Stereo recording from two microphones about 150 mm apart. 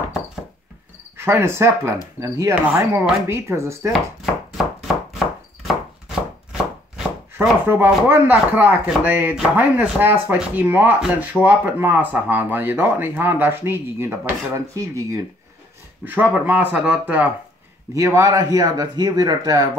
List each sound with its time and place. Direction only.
1.1 s speech: 15° right (ahead or behind)
6.0 s chopping: 5° right (ahead or behind)
7.3 s speech: 15° right (ahead or behind)